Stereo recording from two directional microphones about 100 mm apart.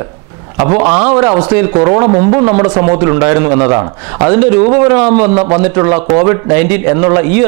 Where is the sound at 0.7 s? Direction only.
20° right (ahead or behind).